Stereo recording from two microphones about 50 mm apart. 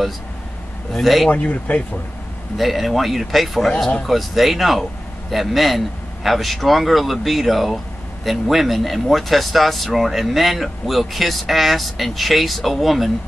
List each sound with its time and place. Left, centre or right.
1.0 s speech: centre
1.3 s speech: left
2.5 s speech: centre